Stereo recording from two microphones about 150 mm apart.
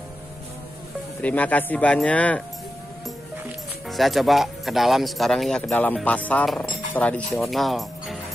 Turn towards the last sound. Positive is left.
turn(degrees=0)  # may be behind; listen again after turning